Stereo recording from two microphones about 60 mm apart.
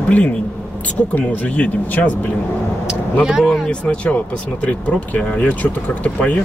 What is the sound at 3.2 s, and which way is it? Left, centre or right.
Speech, centre.